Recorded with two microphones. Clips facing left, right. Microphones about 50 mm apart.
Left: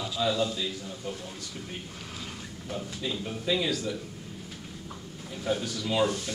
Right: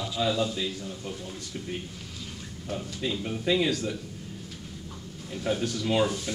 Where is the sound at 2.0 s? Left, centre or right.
Left.